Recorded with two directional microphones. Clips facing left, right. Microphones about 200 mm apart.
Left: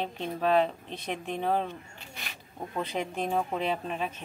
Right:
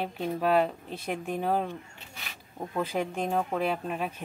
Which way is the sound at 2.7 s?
5° right (ahead or behind).